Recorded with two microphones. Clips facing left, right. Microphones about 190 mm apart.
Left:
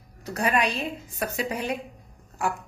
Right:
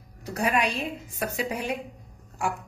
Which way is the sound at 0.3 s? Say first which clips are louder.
Left 1 dB; 5° right (ahead or behind).